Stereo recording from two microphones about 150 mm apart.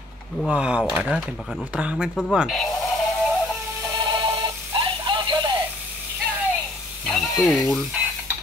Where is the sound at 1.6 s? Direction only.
10° right (ahead or behind).